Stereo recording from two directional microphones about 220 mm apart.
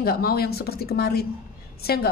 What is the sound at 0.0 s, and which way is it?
A woman's voice, 45° left (ahead or behind).